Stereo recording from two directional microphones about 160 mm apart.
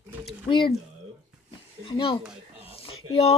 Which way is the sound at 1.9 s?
35° left (ahead or behind).